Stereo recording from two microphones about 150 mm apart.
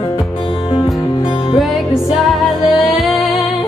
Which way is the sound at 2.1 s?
Centre (ahead or behind).